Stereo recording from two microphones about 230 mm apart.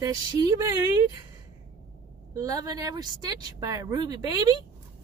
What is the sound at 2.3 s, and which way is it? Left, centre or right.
A woman's voice, centre.